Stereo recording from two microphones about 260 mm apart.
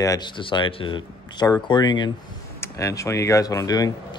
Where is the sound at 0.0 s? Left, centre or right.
Centre.